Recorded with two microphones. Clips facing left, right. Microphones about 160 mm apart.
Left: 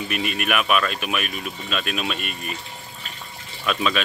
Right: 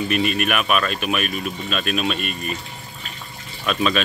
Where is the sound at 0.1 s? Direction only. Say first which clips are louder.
Right 2 dB; 15° left (ahead or behind).